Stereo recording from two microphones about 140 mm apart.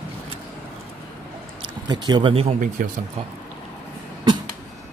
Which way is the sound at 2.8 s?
70° right (ahead or behind).